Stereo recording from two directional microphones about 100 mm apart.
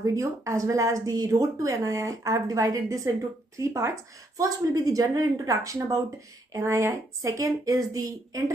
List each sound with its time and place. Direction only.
0.0 s speech: 30° right (ahead or behind)